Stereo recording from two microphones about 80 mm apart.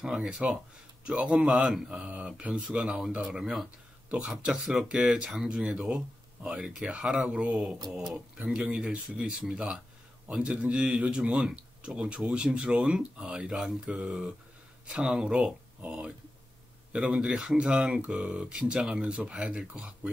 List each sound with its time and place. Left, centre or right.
0.0 s speech: centre